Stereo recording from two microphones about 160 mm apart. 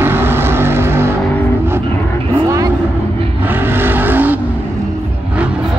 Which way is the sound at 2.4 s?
20° right (ahead or behind).